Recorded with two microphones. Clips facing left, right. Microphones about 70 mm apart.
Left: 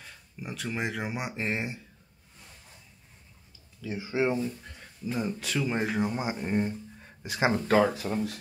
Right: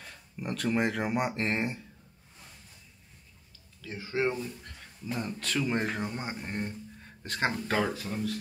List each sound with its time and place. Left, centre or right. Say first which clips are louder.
0.0 s speech: right 3 dB; centre
3.8 s speech: left 2 dB; centre
4.6 s speech: left 1 dB; centre
8.1 s speech: left 2 dB; left